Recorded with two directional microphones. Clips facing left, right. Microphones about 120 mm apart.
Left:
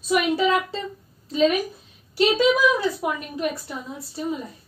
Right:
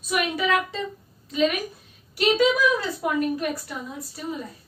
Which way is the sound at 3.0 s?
25° left (ahead or behind).